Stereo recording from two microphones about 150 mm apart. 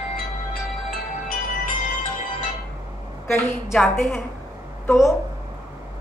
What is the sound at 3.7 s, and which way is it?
Speech, 10° left (ahead or behind).